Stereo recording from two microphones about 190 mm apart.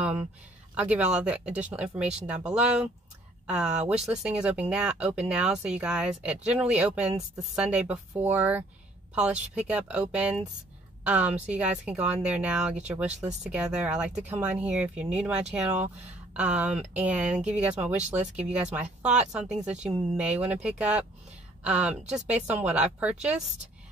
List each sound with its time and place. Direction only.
0.0 s speech: 5° right (ahead or behind)
19.7 s speech: 35° right (ahead or behind)
20.2 s speech: 5° right (ahead or behind)